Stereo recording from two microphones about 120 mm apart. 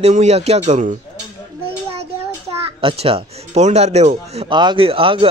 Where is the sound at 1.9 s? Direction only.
55° right (ahead or behind).